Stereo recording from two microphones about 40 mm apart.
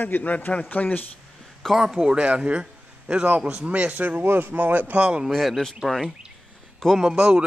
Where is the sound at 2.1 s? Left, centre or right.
Right.